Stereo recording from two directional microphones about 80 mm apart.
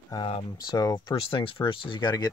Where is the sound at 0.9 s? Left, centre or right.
Left.